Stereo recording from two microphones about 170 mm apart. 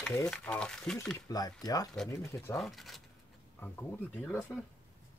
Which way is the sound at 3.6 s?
10° left (ahead or behind).